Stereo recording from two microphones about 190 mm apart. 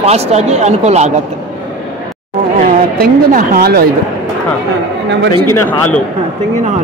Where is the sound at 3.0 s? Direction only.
50° right (ahead or behind).